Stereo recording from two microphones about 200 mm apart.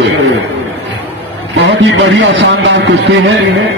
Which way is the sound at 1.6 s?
65° right (ahead or behind).